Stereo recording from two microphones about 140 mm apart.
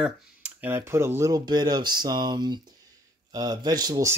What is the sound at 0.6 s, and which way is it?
Speech, 15° right (ahead or behind).